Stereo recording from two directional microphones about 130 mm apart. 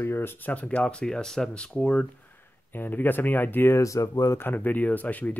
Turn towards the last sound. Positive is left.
turn(degrees=15)  # may be behind; listen again after turning